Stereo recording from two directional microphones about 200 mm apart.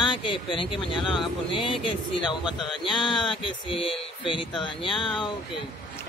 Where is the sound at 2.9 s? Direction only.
Centre (ahead or behind).